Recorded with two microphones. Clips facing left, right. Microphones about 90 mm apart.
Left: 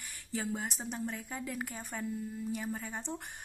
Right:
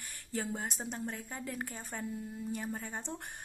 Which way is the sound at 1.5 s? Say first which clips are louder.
Left 1 dB; 10° left (ahead or behind).